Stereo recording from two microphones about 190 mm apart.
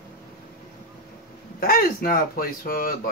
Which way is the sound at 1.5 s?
50° left (ahead or behind).